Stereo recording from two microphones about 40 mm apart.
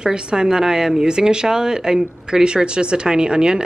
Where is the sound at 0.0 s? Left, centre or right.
Right.